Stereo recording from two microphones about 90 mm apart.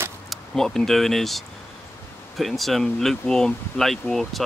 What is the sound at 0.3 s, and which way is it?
Speech, 5° left (ahead or behind).